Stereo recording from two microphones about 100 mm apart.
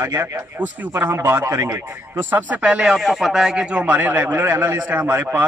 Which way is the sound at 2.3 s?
15° right (ahead or behind).